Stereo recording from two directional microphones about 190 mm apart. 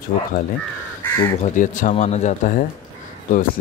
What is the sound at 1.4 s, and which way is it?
Speech, 40° left (ahead or behind).